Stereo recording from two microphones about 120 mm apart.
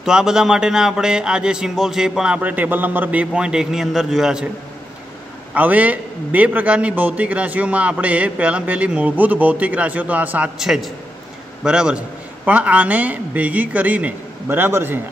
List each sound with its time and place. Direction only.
0.0 s a man's voice: 5° right (ahead or behind)
5.5 s a man's voice: 15° right (ahead or behind)
10.6 s a man's voice: 5° right (ahead or behind); by 15.0 s 20° right (ahead or behind)